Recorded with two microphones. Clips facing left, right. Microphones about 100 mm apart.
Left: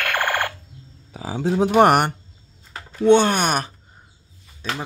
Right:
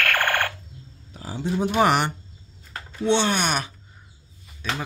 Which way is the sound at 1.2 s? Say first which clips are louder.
Left 5 dB; 90° left.